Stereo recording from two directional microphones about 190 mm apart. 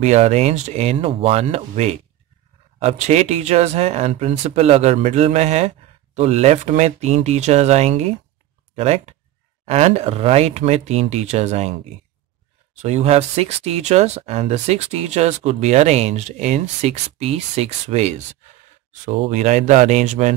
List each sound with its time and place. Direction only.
0.0 s speech: 35° right (ahead or behind)
12.7 s speech: 35° right (ahead or behind)